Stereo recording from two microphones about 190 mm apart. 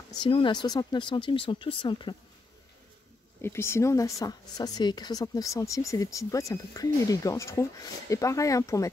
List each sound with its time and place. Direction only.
0.2 s speech: 25° left (ahead or behind)
3.4 s speech: 15° left (ahead or behind)